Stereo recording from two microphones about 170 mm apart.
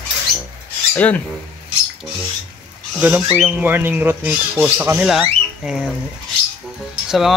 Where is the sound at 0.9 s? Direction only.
10° left (ahead or behind).